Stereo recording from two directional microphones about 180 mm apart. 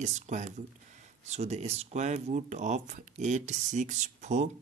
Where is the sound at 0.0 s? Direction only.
40° right (ahead or behind).